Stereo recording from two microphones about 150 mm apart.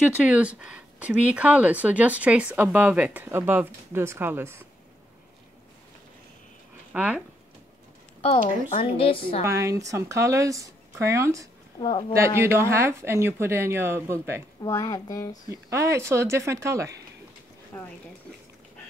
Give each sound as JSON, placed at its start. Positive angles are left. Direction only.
{"t": 0.1, "sound": "speech", "side_deg": -10}
{"t": 6.9, "sound": "speech", "side_deg": -10}
{"t": 8.6, "sound": "speech", "side_deg": 45}
{"t": 9.4, "sound": "speech", "side_deg": -20}
{"t": 11.8, "sound": "speech", "side_deg": 35}
{"t": 12.4, "sound": "speech", "side_deg": -15}
{"t": 14.6, "sound": "speech", "side_deg": 20}
{"t": 15.5, "sound": "speech", "side_deg": -20}
{"t": 17.7, "sound": "speech", "side_deg": 10}